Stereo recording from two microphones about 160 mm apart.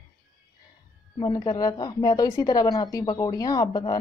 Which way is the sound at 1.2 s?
25° left (ahead or behind).